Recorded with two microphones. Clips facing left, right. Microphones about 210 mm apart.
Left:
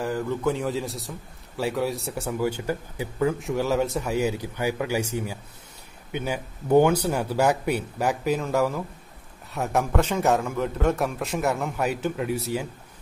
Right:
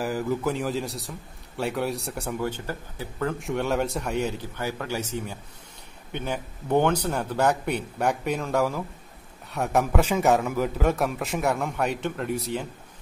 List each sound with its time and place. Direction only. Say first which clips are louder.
0.0 s a man's voice: left 1 dB; 5° right (ahead or behind); by 3.3 s 10° left (ahead or behind)
3.3 s a man's voice: left 2 dB; centre (ahead or behind)